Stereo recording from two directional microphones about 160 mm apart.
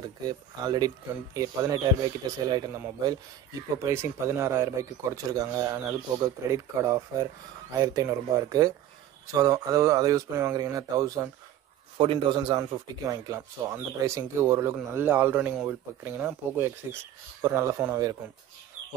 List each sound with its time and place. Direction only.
0.0 s speech: 25° right (ahead or behind)
12.0 s a man's voice: 35° right (ahead or behind)